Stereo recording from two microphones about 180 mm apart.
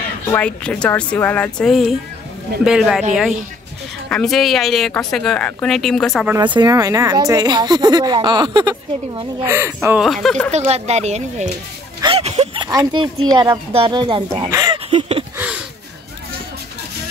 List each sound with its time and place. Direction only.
0.3 s a woman's voice: 5° left (ahead or behind)
4.1 s speech: centre (ahead or behind)
6.4 s speech: 25° right (ahead or behind)
9.4 s speech: 10° right (ahead or behind)
10.0 s speech: centre (ahead or behind)
10.5 s speech: 35° right (ahead or behind)
12.0 s a sound: 35° right (ahead or behind)
12.6 s speech: 20° right (ahead or behind)
14.9 s a sound: 35° right (ahead or behind)
15.3 s a sound: 5° right (ahead or behind)